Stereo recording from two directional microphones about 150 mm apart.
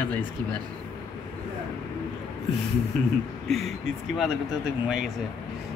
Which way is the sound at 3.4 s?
Centre (ahead or behind).